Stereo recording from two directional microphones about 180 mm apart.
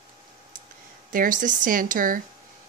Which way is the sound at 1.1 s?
50° right (ahead or behind).